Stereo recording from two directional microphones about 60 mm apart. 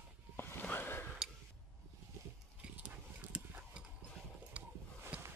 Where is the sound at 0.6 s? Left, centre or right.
Left.